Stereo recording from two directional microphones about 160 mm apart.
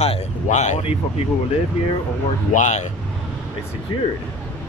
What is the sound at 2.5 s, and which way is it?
Speech, 50° left (ahead or behind).